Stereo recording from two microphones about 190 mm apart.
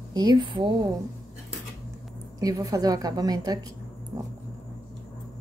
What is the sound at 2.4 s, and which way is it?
Speech, 20° right (ahead or behind).